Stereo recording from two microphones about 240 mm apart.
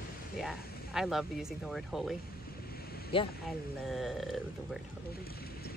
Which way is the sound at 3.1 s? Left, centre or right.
Left.